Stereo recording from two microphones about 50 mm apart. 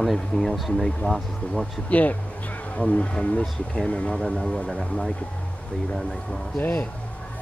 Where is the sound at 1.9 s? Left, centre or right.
Left.